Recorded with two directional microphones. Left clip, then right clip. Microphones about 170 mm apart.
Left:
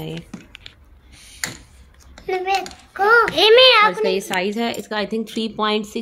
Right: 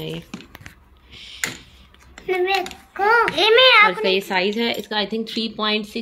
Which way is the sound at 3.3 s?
75° left (ahead or behind).